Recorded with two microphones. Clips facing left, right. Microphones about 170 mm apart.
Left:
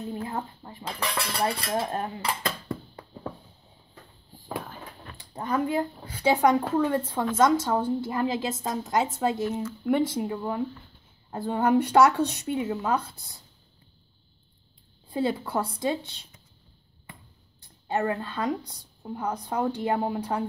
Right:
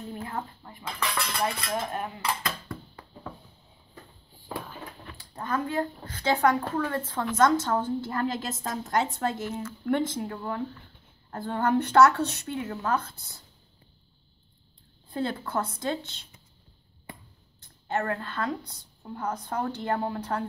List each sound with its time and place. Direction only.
0.1 s dishes: 25° left (ahead or behind)
5.1 s a woman's voice: 20° left (ahead or behind)
15.0 s a woman's voice: 10° left (ahead or behind)
17.8 s a woman's voice: 15° left (ahead or behind)